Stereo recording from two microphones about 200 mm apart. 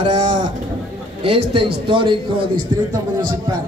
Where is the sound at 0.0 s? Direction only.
35° right (ahead or behind).